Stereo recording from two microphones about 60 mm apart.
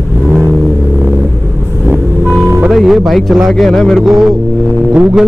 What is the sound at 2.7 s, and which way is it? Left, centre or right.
Speech, centre.